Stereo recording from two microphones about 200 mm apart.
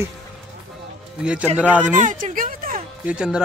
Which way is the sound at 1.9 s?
40° right (ahead or behind).